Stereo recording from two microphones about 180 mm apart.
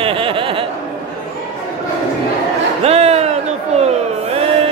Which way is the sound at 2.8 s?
35° right (ahead or behind).